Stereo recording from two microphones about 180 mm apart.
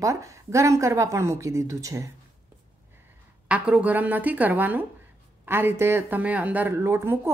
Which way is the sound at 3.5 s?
5° right (ahead or behind).